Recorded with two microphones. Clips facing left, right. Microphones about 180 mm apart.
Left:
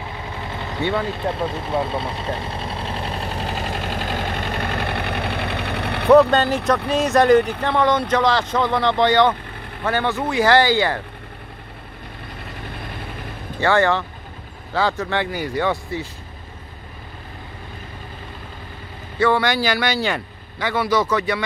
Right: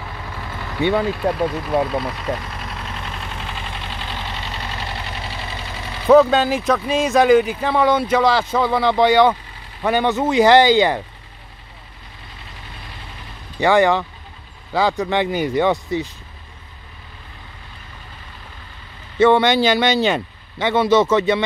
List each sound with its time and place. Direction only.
0.4 s vehicle: 25° left (ahead or behind); by 6.0 s 65° left (ahead or behind)
6.3 s speech: 5° right (ahead or behind); by 11.0 s 20° right (ahead or behind)
13.6 s speech: 15° right (ahead or behind)
19.1 s speech: 20° right (ahead or behind)